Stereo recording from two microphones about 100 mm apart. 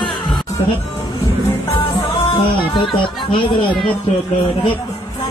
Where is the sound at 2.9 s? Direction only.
55° left (ahead or behind).